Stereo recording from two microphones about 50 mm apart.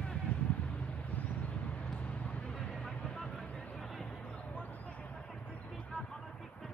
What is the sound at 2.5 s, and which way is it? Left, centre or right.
Vehicle, centre.